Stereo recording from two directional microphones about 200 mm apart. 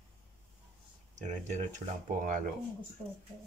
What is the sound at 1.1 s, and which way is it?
Speech, 35° right (ahead or behind).